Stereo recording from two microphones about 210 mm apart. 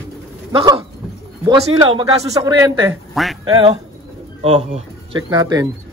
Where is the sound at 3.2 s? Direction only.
Centre (ahead or behind).